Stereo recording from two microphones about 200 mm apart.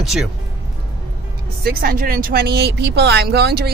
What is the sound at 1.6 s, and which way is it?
Speech, 50° right (ahead or behind).